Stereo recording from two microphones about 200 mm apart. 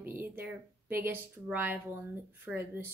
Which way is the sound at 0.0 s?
10° right (ahead or behind).